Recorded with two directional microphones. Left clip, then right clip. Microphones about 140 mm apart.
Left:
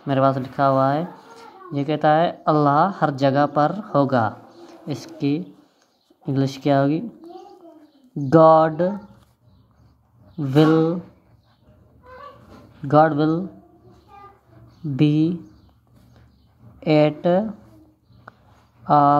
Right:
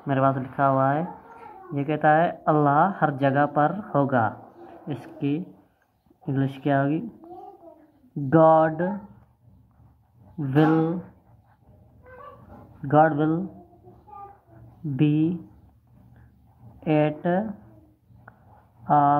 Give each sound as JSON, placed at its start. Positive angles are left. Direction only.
{"t": 0.0, "sound": "speech", "side_deg": 30}
{"t": 4.8, "sound": "speech", "side_deg": 40}
{"t": 8.3, "sound": "speech", "side_deg": 45}
{"t": 10.3, "sound": "speech", "side_deg": 40}
{"t": 12.9, "sound": "speech", "side_deg": 35}
{"t": 15.0, "sound": "speech", "side_deg": 40}
{"t": 16.8, "sound": "speech", "side_deg": 45}
{"t": 18.9, "sound": "speech", "side_deg": 45}